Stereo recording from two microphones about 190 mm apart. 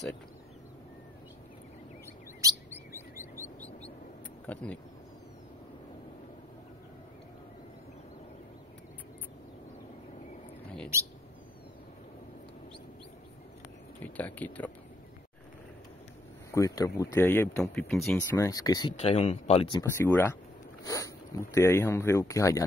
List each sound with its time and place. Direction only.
3.3 s bird: 10° left (ahead or behind)
4.5 s speech: 5° left (ahead or behind)
14.0 s speech: 10° left (ahead or behind)
16.5 s speech: 15° left (ahead or behind)
17.7 s speech: centre (ahead or behind)
18.3 s speech: 15° left (ahead or behind)
18.9 s speech: 35° left (ahead or behind)
19.8 s speech: 15° left (ahead or behind)